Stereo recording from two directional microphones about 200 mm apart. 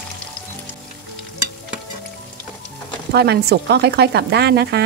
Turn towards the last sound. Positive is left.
turn(degrees=-55)  # may be behind; listen again after turning